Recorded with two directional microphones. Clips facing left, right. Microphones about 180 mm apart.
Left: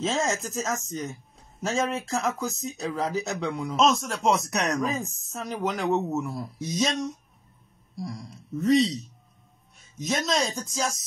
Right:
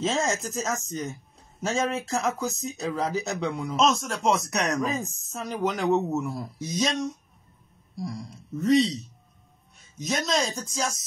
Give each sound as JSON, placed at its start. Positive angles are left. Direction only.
{"t": 0.0, "sound": "speech", "side_deg": 0}
{"t": 7.9, "sound": "speech", "side_deg": 0}
{"t": 9.9, "sound": "speech", "side_deg": 0}